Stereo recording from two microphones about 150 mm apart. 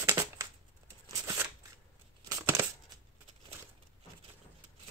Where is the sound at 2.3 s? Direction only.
15° right (ahead or behind).